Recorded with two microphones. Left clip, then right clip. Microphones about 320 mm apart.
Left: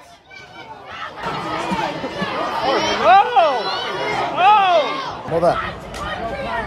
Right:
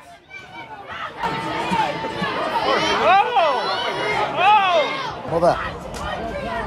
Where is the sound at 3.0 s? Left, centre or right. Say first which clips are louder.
Left 5 dB; left.